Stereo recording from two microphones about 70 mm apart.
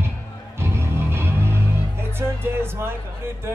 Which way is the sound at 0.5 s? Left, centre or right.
Right.